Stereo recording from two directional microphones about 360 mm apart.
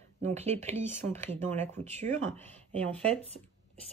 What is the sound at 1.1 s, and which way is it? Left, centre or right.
Speech, centre.